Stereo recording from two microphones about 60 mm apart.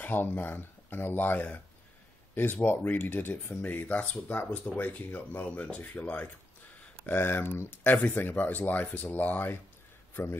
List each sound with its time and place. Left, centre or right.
0.0 s speech: left
7.0 s speech: left